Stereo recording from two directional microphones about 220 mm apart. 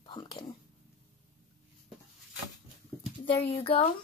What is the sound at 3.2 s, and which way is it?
Speech, 25° left (ahead or behind).